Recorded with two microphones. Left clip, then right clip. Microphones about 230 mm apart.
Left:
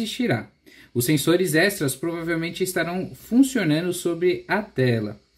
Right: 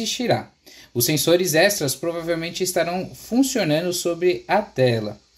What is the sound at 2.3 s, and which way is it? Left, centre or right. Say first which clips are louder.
Speech: right 1 dB; centre.